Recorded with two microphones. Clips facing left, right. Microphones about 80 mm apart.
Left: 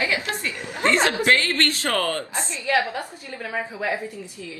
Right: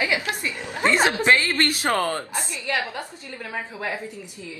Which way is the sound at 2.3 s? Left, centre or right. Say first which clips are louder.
Left 4 dB; left.